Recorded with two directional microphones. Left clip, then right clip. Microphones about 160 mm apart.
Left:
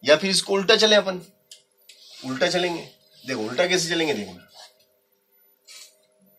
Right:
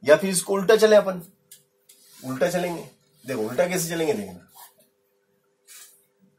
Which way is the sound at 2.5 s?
5° right (ahead or behind).